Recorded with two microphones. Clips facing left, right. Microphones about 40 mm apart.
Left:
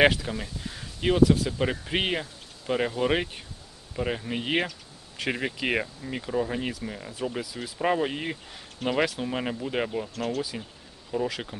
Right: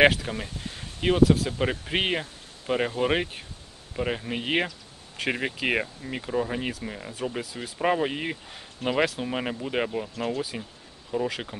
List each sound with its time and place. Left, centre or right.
0.0 s speech: centre
1.0 s speech: centre
10.1 s speech: centre